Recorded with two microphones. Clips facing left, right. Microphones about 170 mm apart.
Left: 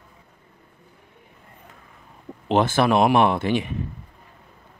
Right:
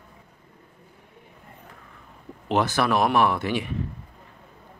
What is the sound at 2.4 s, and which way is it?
Speech, 25° left (ahead or behind).